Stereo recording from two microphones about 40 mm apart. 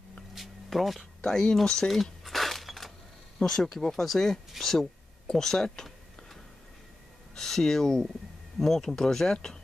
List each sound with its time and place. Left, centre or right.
0.3 s a sound: centre
1.2 s speech: centre
2.2 s shatter: centre
3.3 s speech: centre
7.3 s speech: centre